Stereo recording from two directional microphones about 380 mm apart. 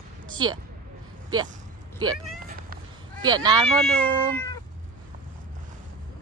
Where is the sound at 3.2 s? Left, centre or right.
Centre.